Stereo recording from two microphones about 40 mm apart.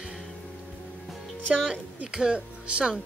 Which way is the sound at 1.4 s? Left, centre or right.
Right.